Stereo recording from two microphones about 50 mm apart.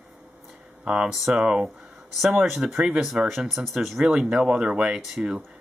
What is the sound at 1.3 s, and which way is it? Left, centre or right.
Speech, centre.